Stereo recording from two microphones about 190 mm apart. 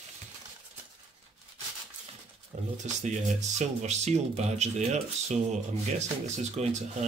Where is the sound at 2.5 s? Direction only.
45° right (ahead or behind).